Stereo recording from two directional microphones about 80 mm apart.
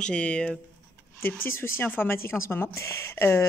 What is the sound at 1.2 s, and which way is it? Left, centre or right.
Speech, left.